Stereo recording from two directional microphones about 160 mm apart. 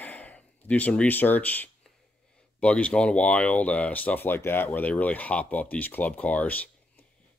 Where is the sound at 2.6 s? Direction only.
5° left (ahead or behind).